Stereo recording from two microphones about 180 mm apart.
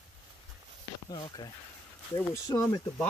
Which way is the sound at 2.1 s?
15° left (ahead or behind).